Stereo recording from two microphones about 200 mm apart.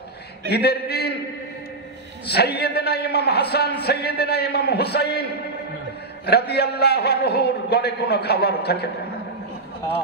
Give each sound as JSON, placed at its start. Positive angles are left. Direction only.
{"t": 0.5, "sound": "a man's voice", "side_deg": 55}
{"t": 2.2, "sound": "a man's voice", "side_deg": 55}